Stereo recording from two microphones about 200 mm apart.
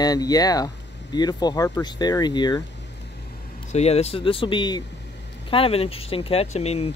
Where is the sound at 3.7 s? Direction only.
30° left (ahead or behind).